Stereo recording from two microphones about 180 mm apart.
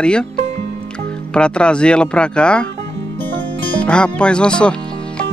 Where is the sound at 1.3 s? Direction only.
5° left (ahead or behind).